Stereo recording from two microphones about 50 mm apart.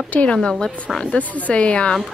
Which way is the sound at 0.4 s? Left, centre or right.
Centre.